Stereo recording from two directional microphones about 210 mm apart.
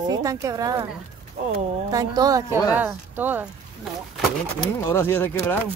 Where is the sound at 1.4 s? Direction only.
35° right (ahead or behind).